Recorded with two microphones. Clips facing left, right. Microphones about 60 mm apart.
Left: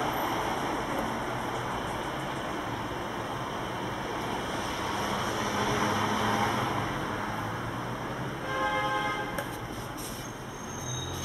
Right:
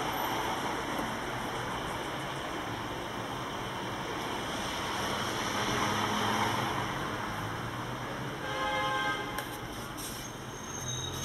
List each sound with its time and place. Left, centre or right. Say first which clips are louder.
0.0 s vehicle: left 3 dB; centre
4.9 s vehicle: left 3 dB; centre